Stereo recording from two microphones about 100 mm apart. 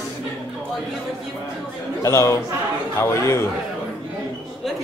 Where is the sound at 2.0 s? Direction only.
30° left (ahead or behind).